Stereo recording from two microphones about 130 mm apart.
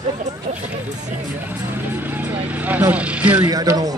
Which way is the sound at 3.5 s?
30° right (ahead or behind).